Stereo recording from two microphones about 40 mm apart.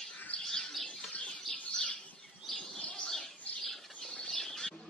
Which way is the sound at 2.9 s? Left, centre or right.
Centre.